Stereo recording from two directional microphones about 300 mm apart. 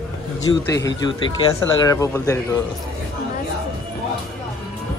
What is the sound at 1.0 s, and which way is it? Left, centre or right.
Speech, centre.